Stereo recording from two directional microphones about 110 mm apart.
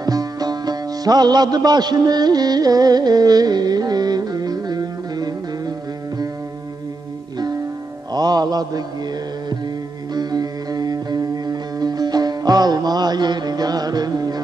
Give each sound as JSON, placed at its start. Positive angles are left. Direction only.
{"t": 0.0, "sound": "music", "side_deg": -35}
{"t": 8.1, "sound": "music", "side_deg": -40}
{"t": 10.1, "sound": "music", "side_deg": -35}